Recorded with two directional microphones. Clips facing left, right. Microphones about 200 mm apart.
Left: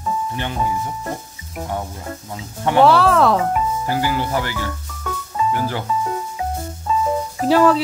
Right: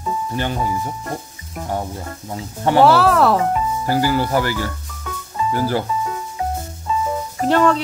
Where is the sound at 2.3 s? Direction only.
35° right (ahead or behind).